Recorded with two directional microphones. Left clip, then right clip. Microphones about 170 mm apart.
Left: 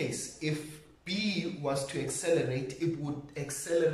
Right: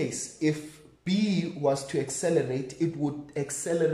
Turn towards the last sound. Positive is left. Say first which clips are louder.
# right 3 dB
turn(degrees=-45)  # may be behind; listen again after turning